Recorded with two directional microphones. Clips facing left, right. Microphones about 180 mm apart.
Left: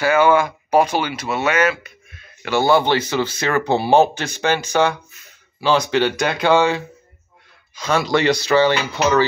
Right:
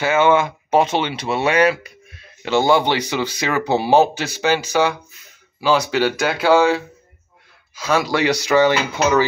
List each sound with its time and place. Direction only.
0.0 s speech: 25° right (ahead or behind)
2.4 s speech: 20° right (ahead or behind)